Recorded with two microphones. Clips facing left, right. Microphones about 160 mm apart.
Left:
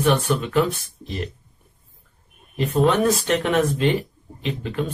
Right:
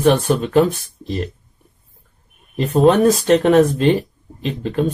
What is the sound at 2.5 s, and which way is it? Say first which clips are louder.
Speech: right 6 dB; 40° right (ahead or behind).